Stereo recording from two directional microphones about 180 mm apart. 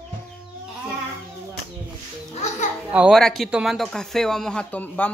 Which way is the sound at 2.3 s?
40° left (ahead or behind).